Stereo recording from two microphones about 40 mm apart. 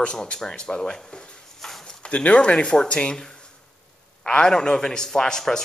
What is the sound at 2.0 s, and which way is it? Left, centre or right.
A man's voice, left.